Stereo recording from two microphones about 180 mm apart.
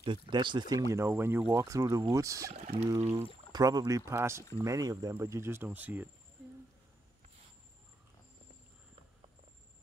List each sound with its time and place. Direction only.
0.0 s speech: 25° right (ahead or behind)
2.5 s speech: 35° right (ahead or behind)
3.5 s speech: 20° right (ahead or behind)